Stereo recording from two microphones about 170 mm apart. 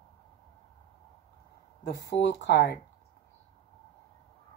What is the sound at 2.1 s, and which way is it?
Speech, 80° left.